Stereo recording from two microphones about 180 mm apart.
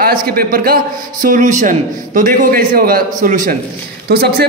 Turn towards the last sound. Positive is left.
turn(degrees=-60)  # may be behind; listen again after turning